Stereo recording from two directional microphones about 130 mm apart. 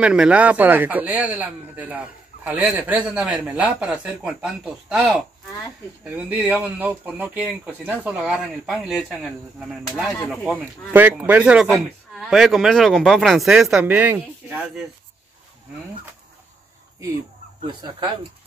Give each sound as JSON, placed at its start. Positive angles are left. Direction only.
{"t": 0.0, "sound": "speech", "side_deg": -5}
{"t": 10.4, "sound": "speech", "side_deg": -10}
{"t": 13.8, "sound": "speech", "side_deg": -15}
{"t": 17.6, "sound": "speech", "side_deg": -35}